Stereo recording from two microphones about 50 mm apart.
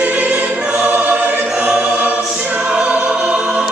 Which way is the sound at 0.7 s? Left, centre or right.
Right.